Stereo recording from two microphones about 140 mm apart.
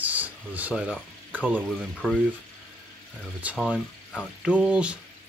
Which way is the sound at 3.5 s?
5° right (ahead or behind).